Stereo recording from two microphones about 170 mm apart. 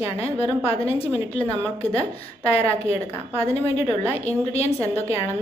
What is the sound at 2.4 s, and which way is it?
Speech, 35° left (ahead or behind).